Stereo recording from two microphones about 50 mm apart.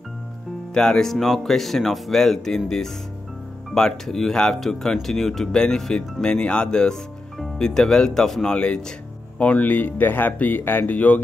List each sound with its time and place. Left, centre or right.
0.7 s speech: centre
3.7 s speech: centre
9.4 s speech: left